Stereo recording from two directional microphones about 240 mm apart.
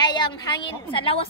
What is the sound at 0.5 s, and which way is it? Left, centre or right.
Speech, left.